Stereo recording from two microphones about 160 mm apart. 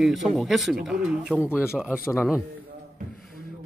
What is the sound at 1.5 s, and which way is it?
Speech, 15° left (ahead or behind).